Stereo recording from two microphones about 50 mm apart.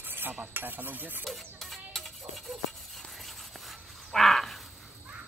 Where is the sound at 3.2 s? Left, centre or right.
Centre.